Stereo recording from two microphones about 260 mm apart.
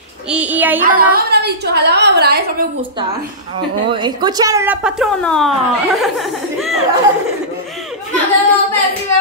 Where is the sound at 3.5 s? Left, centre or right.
Centre.